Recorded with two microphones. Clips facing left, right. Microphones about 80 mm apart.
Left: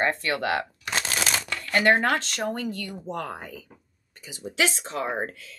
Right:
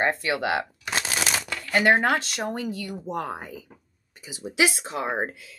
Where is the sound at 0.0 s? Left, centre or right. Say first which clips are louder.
Right 1 dB; centre.